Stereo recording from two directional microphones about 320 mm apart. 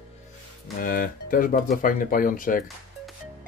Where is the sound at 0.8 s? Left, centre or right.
Left.